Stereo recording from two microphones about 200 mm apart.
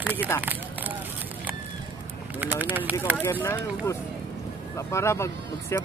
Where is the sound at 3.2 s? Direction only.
10° left (ahead or behind).